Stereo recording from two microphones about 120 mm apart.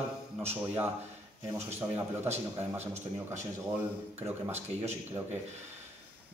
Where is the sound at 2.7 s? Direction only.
70° right (ahead or behind).